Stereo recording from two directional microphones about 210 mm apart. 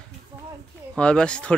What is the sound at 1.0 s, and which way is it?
Speech, 5° left (ahead or behind).